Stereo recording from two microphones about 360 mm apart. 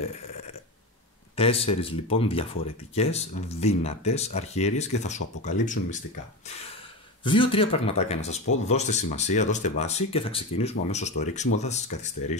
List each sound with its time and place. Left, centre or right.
1.3 s speech: centre
7.2 s speech: centre